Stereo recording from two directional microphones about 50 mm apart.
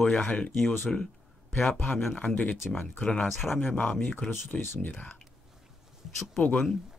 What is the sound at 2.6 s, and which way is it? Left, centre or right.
Speech, centre.